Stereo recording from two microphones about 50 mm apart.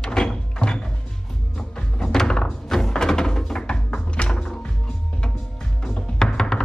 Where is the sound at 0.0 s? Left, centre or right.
Centre.